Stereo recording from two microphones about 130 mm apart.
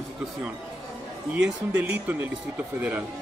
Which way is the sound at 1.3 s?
10° right (ahead or behind).